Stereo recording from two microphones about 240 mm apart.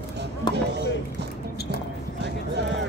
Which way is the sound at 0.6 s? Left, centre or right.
Right.